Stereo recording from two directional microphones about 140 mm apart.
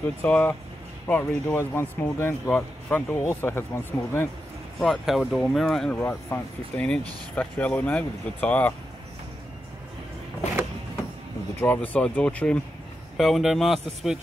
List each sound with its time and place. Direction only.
0.0 s speech: 10° left (ahead or behind)
4.7 s speech: 5° left (ahead or behind)
5.9 s speech: 15° left (ahead or behind)
11.6 s speech: 15° left (ahead or behind); by 14.2 s 5° right (ahead or behind)